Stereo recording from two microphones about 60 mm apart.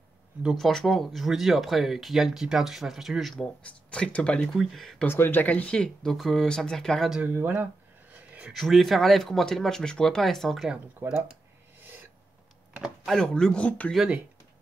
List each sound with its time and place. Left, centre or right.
0.6 s speech: centre
3.6 s speech: centre
4.6 s speech: centre
5.0 s speech: left; by 7.1 s centre
7.3 s speech: right
8.1 s a sound: right
8.5 s speech: centre
11.0 s speech: right
13.0 s speech: centre; by 13.9 s left